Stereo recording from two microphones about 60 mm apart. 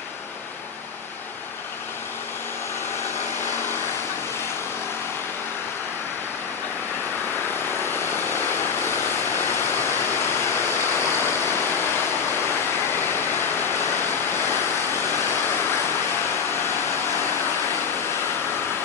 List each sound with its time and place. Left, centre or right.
8.3 s waves: left
10.7 s waterfall: left
13.1 s waves: left